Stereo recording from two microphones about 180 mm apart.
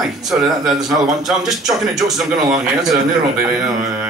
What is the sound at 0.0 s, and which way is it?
A man's voice, centre (ahead or behind).